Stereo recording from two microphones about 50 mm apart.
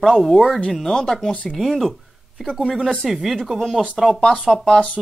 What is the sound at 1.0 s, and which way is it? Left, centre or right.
Speech, centre.